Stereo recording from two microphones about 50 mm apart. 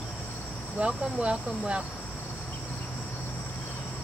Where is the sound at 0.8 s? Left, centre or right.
Centre.